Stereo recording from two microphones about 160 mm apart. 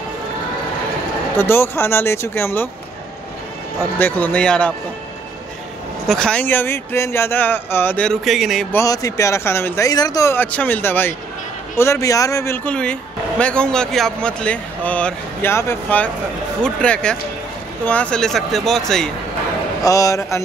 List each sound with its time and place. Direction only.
1.3 s speech: 15° left (ahead or behind)
4.0 s speech: 10° left (ahead or behind)
6.0 s speech: 5° left (ahead or behind)
8.7 s speech: 20° left (ahead or behind)
12.6 s speech: 5° left (ahead or behind)
19.8 s speech: 20° left (ahead or behind)